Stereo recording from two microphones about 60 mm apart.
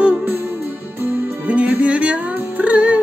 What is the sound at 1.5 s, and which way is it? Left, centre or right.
Music, right.